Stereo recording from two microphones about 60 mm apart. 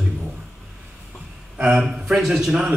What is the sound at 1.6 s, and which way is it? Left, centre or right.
A man's voice, centre.